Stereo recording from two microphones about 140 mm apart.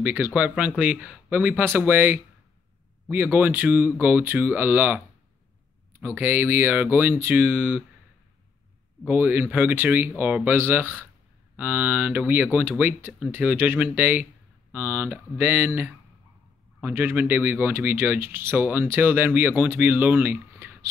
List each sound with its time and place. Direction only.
0.0 s speech: 15° right (ahead or behind)
9.0 s speech: 15° right (ahead or behind)